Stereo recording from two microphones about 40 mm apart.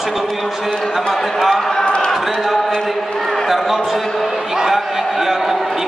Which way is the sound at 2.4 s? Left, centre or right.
Centre.